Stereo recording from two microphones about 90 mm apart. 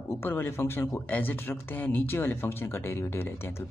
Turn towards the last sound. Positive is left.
turn(degrees=25)  # may be behind; listen again after turning